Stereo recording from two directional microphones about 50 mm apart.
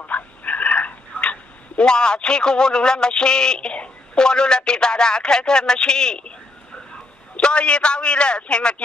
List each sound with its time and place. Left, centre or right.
0.0 s speech: left; by 6.3 s centre
7.4 s a man's voice: left